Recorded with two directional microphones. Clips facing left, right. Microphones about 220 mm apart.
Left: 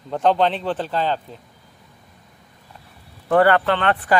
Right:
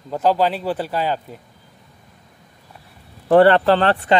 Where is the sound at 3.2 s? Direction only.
30° right (ahead or behind).